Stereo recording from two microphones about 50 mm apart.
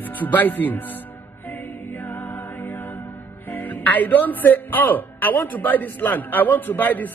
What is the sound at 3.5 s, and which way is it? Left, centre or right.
Speech, left.